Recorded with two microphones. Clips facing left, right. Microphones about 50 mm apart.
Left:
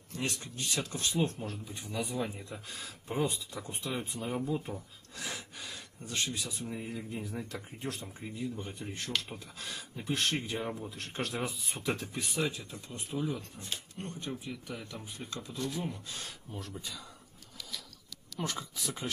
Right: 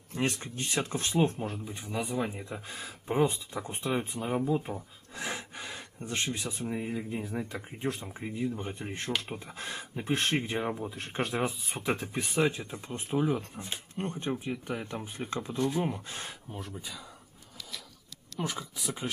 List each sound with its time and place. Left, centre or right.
0.1 s speech: right
16.5 s speech: centre
18.4 s speech: centre